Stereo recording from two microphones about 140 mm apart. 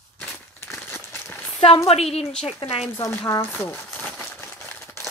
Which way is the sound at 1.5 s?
45° left (ahead or behind).